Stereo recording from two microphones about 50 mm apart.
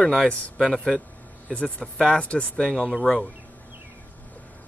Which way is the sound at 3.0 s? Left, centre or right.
Centre.